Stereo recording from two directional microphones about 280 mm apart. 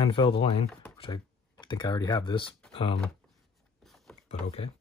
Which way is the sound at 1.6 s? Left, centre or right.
Centre.